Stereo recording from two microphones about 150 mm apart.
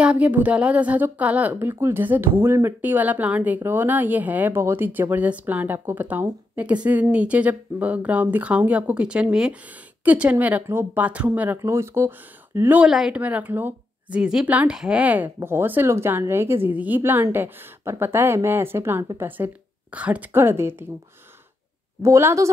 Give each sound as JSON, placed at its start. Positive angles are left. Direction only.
{"t": 0.0, "sound": "a woman's voice", "side_deg": -10}
{"t": 22.0, "sound": "a woman's voice", "side_deg": -20}